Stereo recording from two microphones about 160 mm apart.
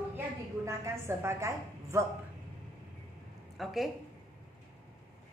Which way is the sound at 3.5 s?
Centre (ahead or behind).